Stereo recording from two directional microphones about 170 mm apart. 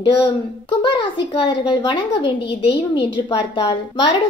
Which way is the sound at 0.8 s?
30° left (ahead or behind).